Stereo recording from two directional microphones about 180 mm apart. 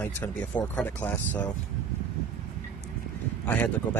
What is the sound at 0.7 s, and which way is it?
Speech, 10° left (ahead or behind).